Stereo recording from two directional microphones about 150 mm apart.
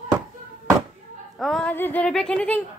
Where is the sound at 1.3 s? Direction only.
Centre (ahead or behind).